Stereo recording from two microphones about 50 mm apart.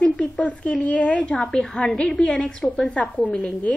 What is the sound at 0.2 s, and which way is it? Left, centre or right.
A woman's voice, left.